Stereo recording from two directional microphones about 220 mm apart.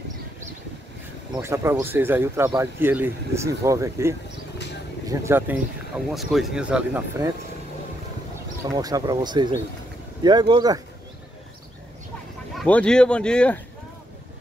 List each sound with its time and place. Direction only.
1.3 s speech: 10° right (ahead or behind)
8.6 s speech: 15° right (ahead or behind)
12.5 s speech: 5° left (ahead or behind)